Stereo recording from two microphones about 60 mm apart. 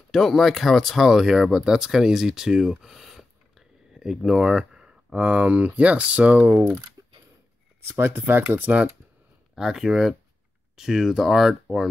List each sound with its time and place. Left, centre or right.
0.1 s speech: centre; by 6.4 s right
7.9 s speech: right
8.5 s speech: right
9.6 s speech: centre